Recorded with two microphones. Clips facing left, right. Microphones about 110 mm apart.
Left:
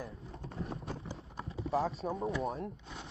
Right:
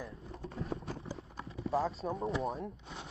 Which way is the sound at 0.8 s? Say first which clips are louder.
Even; 30° left (ahead or behind).